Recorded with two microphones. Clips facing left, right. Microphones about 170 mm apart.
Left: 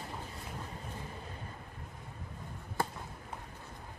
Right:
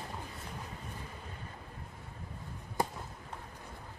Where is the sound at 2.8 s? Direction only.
15° right (ahead or behind).